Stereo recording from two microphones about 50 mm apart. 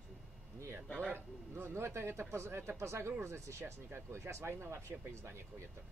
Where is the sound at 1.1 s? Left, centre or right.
Right.